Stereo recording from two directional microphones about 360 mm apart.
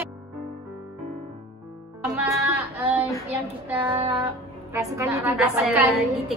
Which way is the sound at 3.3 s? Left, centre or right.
Centre.